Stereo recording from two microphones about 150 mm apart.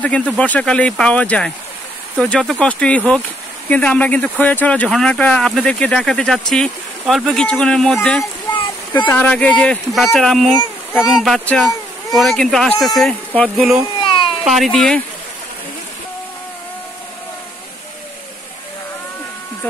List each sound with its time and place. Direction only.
0.0 s speech: 5° left (ahead or behind)
8.5 s a sound: 30° left (ahead or behind)
9.1 s speech: 10° left (ahead or behind)
13.6 s speech: 5° right (ahead or behind)
14.0 s baby cry: 35° left (ahead or behind)
14.4 s speech: centre (ahead or behind)